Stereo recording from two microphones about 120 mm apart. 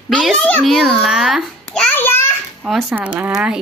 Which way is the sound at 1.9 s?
20° left (ahead or behind).